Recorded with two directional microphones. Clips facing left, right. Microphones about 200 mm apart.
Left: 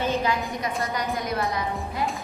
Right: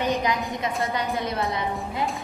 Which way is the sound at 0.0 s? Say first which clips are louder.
Even; 15° right (ahead or behind).